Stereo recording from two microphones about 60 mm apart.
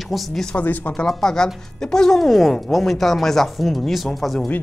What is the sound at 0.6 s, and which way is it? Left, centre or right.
Speech, left.